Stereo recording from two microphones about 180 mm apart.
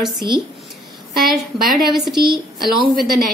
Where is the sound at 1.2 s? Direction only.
Centre (ahead or behind).